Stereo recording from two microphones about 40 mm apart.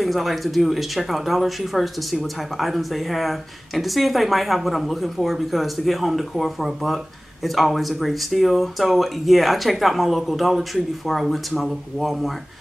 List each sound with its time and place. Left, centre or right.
0.0 s speech: centre